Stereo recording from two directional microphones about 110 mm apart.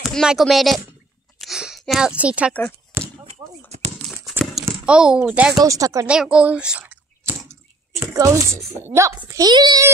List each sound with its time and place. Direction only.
0.0 s speech: 5° right (ahead or behind)
1.4 s a sound: 5° right (ahead or behind)
2.9 s basketball bounce: 20° right (ahead or behind)
3.3 s a sound: 85° right
4.2 s a sound: centre (ahead or behind)
4.8 s speech: 10° right (ahead or behind)
5.6 s a child's voice: 30° right (ahead or behind)
6.0 s speech: 10° right (ahead or behind)
7.9 s a woman's voice: 25° right (ahead or behind)
9.3 s a child's voice: 35° right (ahead or behind)